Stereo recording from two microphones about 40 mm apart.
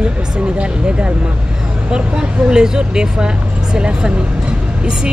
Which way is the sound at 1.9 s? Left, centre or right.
Right.